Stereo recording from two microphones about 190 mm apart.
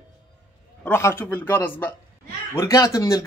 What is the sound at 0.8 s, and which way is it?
Speech, 10° left (ahead or behind).